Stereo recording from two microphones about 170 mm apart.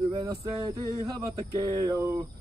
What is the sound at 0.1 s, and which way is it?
Speech, 25° right (ahead or behind).